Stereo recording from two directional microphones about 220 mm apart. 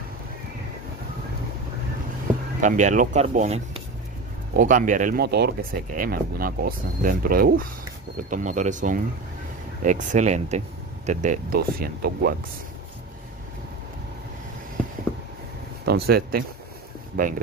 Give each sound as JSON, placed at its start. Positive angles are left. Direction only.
{"t": 2.6, "sound": "speech", "side_deg": -35}
{"t": 15.8, "sound": "speech", "side_deg": -45}